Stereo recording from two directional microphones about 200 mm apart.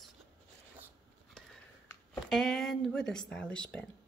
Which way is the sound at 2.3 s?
Centre (ahead or behind).